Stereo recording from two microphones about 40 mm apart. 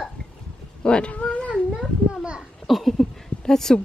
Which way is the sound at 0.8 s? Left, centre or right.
Left.